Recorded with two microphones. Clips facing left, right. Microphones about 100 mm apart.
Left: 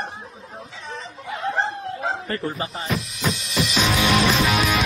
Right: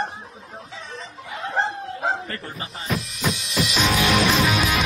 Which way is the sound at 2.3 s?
35° left (ahead or behind).